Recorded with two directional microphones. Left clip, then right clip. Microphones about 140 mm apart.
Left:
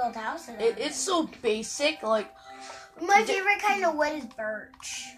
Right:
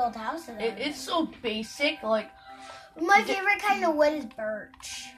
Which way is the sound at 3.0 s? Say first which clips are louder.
Even; 45° right (ahead or behind).